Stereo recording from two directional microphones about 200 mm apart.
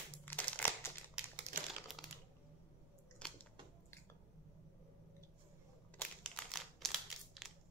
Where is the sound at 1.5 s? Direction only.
45° right (ahead or behind).